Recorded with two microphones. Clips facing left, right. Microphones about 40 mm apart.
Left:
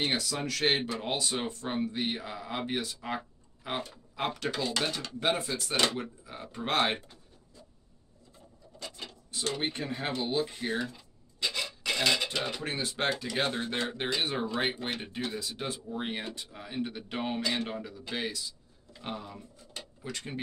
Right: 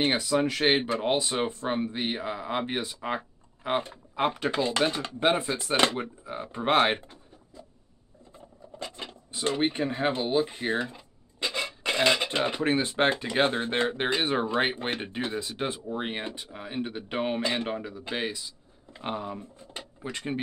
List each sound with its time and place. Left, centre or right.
0.0 s speech: right
8.7 s speech: right